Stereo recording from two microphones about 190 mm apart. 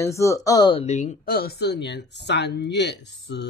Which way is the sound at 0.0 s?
15° left (ahead or behind).